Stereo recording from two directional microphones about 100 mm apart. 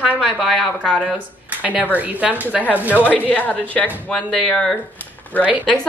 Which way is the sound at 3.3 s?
15° left (ahead or behind).